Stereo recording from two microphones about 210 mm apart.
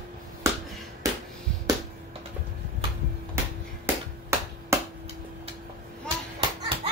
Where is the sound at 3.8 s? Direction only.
10° right (ahead or behind).